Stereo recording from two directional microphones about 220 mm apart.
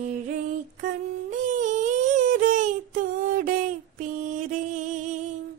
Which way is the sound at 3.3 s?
35° right (ahead or behind).